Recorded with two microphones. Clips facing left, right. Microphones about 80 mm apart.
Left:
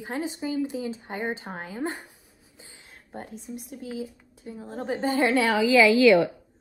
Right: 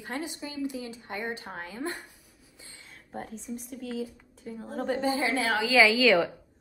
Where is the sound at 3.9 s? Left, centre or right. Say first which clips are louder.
Even; centre.